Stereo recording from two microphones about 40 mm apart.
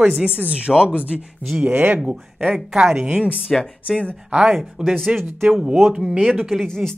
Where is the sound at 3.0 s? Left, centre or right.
Right.